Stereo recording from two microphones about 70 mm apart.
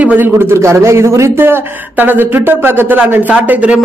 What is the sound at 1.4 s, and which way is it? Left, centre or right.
A man's voice, right.